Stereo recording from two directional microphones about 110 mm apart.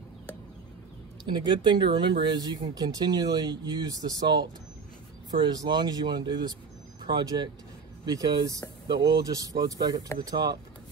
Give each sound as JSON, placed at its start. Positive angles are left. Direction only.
{"t": 1.2, "sound": "speech", "side_deg": -45}